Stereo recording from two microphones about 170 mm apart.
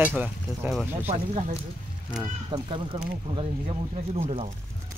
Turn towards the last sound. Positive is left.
turn(degrees=-35)  # may be behind; listen again after turning